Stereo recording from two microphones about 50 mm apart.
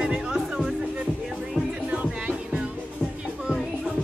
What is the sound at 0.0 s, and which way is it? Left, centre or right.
Music, centre.